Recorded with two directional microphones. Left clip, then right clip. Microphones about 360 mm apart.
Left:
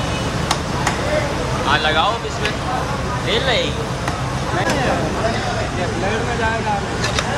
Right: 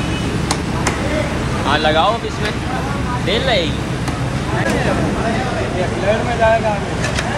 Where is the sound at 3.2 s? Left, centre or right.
Centre.